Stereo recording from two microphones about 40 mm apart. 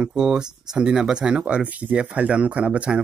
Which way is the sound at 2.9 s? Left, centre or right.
Centre.